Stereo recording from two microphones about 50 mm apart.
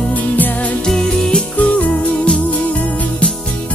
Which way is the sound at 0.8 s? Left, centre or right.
Centre.